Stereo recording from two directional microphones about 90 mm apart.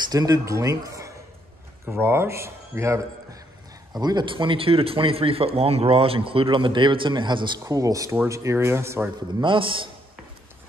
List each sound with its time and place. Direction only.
0.1 s speech: 45° right (ahead or behind)
4.0 s speech: 55° right (ahead or behind)
7.6 s speech: 40° right (ahead or behind)
9.4 s a man's voice: 70° right (ahead or behind)